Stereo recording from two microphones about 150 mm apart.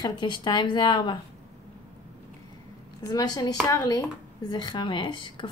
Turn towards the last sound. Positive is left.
turn(degrees=35)  # may be behind; listen again after turning